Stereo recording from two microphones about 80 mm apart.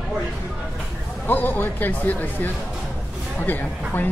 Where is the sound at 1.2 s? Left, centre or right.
Left.